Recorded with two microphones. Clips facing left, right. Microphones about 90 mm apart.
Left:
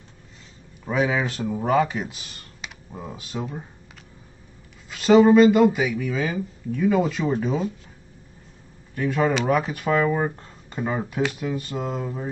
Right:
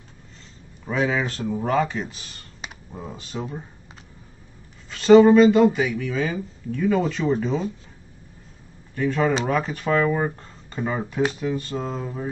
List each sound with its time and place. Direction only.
0.8 s speech: 10° left (ahead or behind)
4.9 s speech: 5° left (ahead or behind)
8.9 s speech: 5° left (ahead or behind)